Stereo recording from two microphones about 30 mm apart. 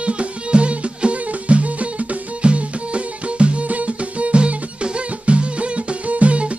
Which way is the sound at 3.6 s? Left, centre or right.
Right.